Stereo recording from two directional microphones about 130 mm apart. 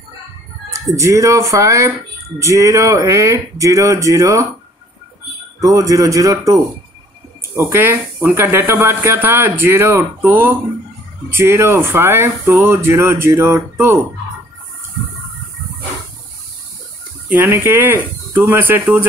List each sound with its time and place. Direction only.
0.7 s speech: 25° right (ahead or behind)
5.6 s speech: 25° right (ahead or behind)
17.3 s speech: 15° right (ahead or behind)